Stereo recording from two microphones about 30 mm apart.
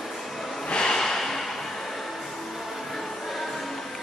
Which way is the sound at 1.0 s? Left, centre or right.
Centre.